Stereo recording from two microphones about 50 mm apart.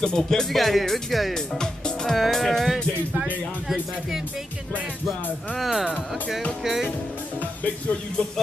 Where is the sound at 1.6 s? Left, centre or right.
Centre.